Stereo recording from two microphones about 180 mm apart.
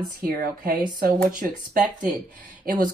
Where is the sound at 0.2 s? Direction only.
60° right (ahead or behind).